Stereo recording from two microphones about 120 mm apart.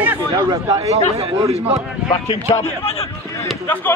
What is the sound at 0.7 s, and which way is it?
Speech, 60° right (ahead or behind).